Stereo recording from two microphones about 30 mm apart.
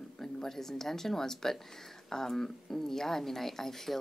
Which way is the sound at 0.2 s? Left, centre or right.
Centre.